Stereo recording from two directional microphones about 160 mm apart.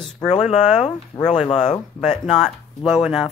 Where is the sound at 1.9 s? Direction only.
Centre (ahead or behind).